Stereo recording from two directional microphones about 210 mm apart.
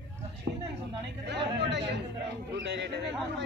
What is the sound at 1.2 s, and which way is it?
A man's voice, 55° right (ahead or behind).